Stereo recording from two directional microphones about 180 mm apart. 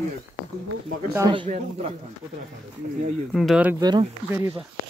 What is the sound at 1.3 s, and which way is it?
Speech, 30° right (ahead or behind).